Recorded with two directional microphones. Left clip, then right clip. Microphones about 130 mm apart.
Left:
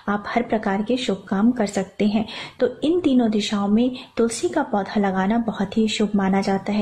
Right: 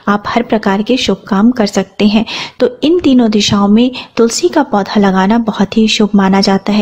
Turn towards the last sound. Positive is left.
turn(degrees=-45)  # may be behind; listen again after turning